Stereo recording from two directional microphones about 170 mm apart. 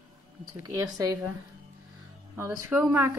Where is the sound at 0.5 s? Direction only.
20° right (ahead or behind).